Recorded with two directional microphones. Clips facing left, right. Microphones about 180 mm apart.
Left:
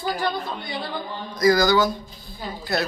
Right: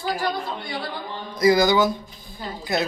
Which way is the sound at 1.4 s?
25° right (ahead or behind).